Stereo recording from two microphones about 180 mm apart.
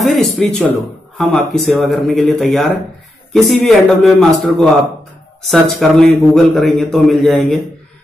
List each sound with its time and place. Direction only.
0.0 s speech: centre (ahead or behind)